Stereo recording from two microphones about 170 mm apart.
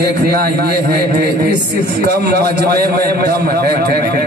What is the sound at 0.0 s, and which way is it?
A man's voice, 65° right (ahead or behind).